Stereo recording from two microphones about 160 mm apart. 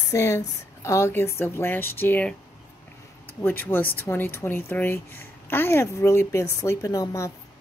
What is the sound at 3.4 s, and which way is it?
A woman's voice, 15° left (ahead or behind).